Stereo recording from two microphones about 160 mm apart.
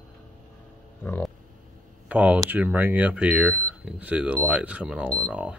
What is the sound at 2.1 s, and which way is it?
Speech, 10° right (ahead or behind).